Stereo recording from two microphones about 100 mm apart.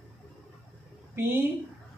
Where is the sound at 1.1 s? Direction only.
25° right (ahead or behind).